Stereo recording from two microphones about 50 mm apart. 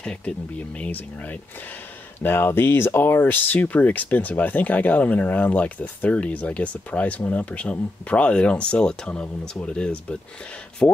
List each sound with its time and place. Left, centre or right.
0.7 s speech: left
2.1 s speech: left; by 10.1 s centre
10.8 s speech: left